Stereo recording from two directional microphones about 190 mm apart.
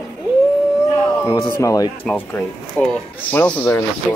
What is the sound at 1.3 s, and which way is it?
Speech, 15° left (ahead or behind).